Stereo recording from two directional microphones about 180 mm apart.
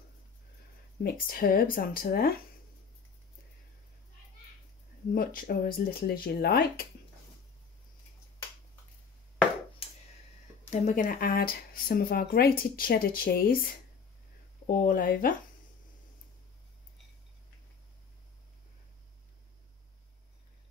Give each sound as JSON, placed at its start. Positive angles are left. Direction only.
{"t": 1.0, "sound": "speech", "side_deg": 55}
{"t": 5.1, "sound": "speech", "side_deg": 50}
{"t": 10.7, "sound": "speech", "side_deg": 45}